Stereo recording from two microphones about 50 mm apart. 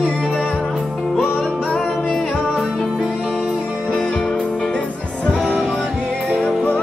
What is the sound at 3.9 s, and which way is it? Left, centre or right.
Music, left.